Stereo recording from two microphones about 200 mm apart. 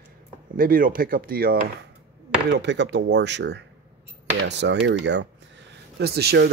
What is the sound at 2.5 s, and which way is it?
Speech, 60° right (ahead or behind).